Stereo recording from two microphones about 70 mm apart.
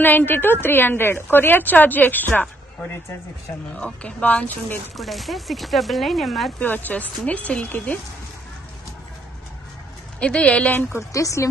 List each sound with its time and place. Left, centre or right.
0.0 s a woman's voice: left
3.7 s a woman's voice: centre
4.9 s chopping: centre
6.6 s a woman's voice: left
10.2 s speech: centre
10.9 s speech: left